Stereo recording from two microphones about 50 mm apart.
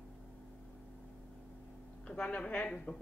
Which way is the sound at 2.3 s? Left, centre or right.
Left.